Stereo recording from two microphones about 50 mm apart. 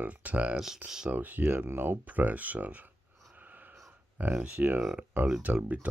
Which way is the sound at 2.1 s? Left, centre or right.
Right.